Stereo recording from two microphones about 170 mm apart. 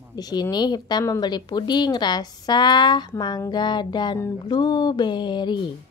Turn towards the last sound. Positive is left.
turn(degrees=25)  # may be behind; listen again after turning